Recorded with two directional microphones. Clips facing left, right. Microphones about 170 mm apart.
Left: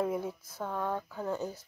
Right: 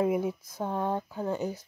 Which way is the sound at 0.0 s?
15° right (ahead or behind).